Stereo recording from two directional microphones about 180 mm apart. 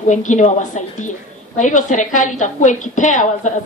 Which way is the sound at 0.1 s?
45° left (ahead or behind).